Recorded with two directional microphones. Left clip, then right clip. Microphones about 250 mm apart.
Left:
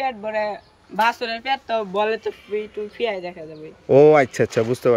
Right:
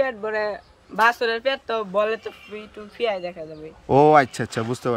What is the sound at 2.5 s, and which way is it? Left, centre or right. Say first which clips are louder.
Speech: left 10 dB; right.